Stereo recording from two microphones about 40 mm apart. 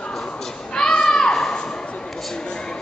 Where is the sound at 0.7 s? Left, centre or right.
Centre.